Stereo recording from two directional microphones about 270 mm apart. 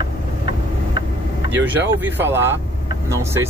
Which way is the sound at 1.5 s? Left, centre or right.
Centre.